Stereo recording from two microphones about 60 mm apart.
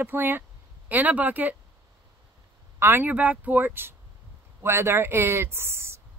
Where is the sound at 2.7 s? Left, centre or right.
Right.